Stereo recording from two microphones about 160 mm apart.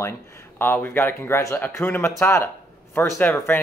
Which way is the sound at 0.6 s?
10° left (ahead or behind).